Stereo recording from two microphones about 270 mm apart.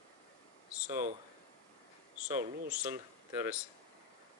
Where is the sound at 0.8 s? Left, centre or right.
Centre.